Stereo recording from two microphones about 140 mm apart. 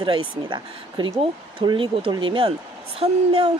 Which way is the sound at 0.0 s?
35° right (ahead or behind).